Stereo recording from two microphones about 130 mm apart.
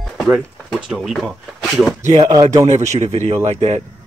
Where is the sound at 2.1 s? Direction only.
30° right (ahead or behind).